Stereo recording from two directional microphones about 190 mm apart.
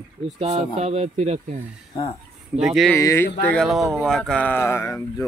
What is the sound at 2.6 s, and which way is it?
Speech, centre (ahead or behind).